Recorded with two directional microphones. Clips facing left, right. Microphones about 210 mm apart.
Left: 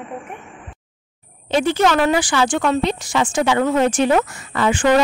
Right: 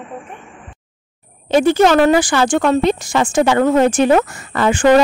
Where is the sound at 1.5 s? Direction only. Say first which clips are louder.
Right 5 dB; 45° right (ahead or behind).